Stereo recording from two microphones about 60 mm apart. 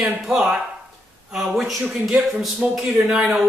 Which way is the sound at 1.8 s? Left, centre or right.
Centre.